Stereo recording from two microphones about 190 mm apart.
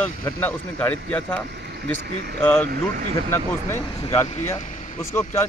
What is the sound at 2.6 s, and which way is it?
Speech, 50° right (ahead or behind).